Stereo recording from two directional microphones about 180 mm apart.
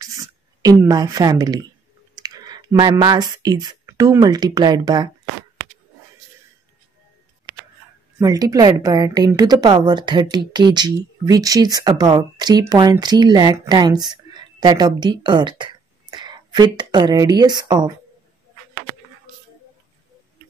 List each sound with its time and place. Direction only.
0.0 s a sound: 20° right (ahead or behind)
2.1 s speech: 20° right (ahead or behind)
8.2 s a woman's voice: 20° right (ahead or behind)